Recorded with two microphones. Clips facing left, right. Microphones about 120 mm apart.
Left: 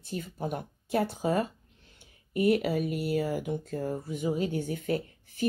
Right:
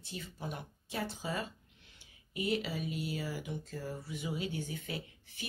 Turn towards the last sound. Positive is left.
turn(degrees=50)  # may be behind; listen again after turning